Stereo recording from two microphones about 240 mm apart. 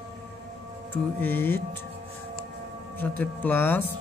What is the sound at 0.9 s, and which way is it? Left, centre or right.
Speech, centre.